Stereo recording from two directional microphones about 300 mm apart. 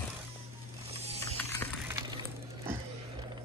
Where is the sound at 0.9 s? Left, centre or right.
Centre.